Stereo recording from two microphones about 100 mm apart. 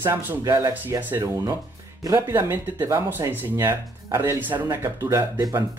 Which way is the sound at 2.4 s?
25° right (ahead or behind).